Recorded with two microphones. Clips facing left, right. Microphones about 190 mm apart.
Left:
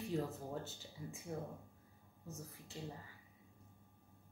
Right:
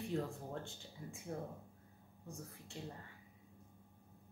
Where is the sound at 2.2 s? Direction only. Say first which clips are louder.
Even; centre (ahead or behind).